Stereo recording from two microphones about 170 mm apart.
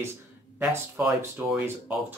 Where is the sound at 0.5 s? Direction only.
5° right (ahead or behind).